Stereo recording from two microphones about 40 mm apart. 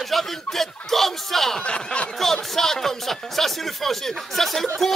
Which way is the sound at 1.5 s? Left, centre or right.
Left.